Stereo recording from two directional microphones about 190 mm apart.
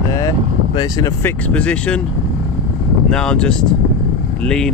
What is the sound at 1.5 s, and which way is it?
Speech, 5° left (ahead or behind).